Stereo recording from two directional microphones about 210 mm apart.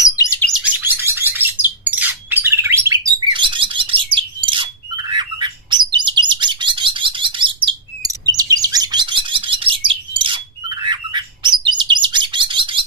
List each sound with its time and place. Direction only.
0.0 s chirp: 15° left (ahead or behind)
0.5 s bird: 5° right (ahead or behind)
3.1 s bird: 25° right (ahead or behind)